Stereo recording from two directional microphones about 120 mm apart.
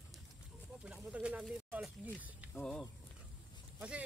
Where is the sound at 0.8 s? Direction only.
10° right (ahead or behind).